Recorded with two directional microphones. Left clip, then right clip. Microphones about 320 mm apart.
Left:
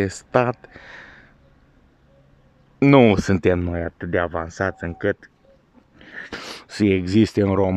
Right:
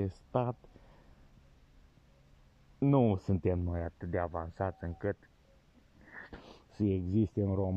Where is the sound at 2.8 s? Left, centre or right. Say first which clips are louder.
Left 16 dB; left.